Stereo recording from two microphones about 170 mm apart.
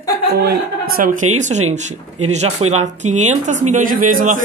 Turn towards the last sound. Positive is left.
turn(degrees=-50)  # may be behind; listen again after turning